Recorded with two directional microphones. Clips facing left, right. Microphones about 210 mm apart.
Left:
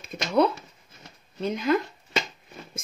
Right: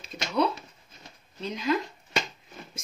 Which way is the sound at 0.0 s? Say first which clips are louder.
Left 5 dB; 50° left (ahead or behind).